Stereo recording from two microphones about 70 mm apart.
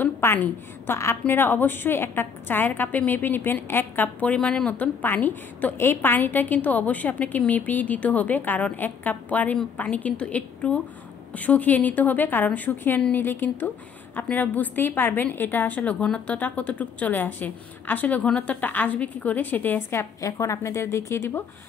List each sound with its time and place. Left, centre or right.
0.0 s a woman's voice: left
20.0 s a woman's voice: left